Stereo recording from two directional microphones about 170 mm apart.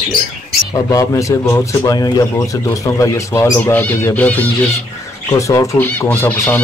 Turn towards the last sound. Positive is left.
turn(degrees=10)  # may be behind; listen again after turning